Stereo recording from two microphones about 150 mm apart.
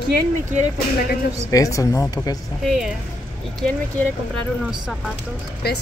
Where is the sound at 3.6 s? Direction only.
5° left (ahead or behind).